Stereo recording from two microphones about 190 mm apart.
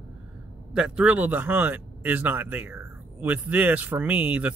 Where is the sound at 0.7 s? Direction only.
5° right (ahead or behind).